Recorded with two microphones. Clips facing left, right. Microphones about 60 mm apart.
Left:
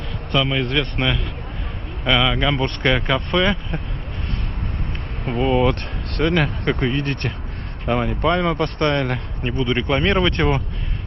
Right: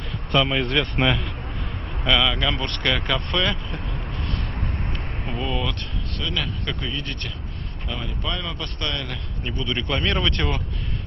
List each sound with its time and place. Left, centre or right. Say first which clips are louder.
0.3 s a man's voice: left 1 dB; centre
2.0 s speech: left 3 dB; centre
5.6 s a man's voice: left 9 dB; left